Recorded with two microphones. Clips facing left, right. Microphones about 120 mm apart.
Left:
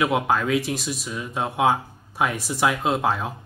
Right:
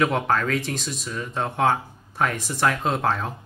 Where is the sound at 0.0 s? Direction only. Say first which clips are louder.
Even; 10° left (ahead or behind).